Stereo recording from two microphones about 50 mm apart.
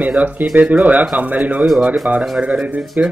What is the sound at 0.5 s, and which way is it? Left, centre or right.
Speech, right.